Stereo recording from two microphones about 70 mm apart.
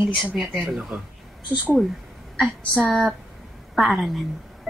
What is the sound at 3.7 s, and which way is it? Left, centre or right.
Speech, centre.